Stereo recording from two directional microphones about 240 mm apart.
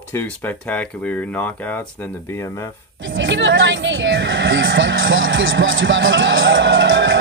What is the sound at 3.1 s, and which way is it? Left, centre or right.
Speech, right.